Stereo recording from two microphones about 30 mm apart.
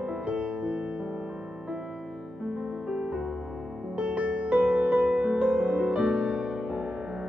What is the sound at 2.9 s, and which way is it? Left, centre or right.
Music, right.